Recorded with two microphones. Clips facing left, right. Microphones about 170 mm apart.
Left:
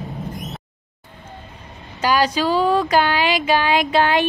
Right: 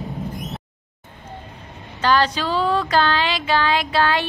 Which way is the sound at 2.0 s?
10° left (ahead or behind).